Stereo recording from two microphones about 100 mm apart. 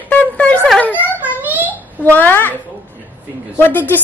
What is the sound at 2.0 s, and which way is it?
Speech, 20° left (ahead or behind).